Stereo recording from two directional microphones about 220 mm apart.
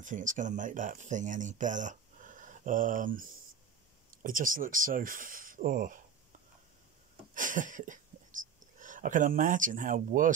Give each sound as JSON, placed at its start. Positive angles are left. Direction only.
{"t": 0.0, "sound": "speech", "side_deg": -35}
{"t": 7.3, "sound": "speech", "side_deg": -35}